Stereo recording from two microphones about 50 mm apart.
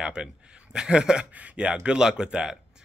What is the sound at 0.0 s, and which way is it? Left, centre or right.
Speech, centre.